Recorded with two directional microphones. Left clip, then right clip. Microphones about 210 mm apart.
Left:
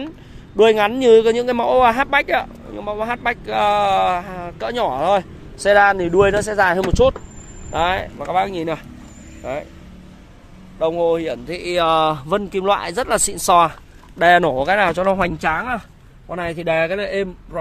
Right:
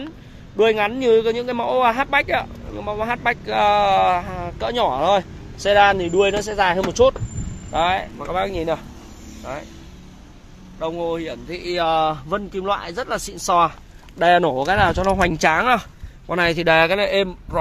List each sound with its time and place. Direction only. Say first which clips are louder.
0.6 s speech: left 4 dB; 35° left (ahead or behind)
2.7 s speech: even; 15° left (ahead or behind)
7.7 s speech: even; 25° left (ahead or behind)
10.8 s speech: left 7 dB; 35° left (ahead or behind)
14.1 s speech: left 2 dB; 20° left (ahead or behind)
15.5 s speech: right 5 dB; 55° right (ahead or behind); by 17.6 s 25° right (ahead or behind)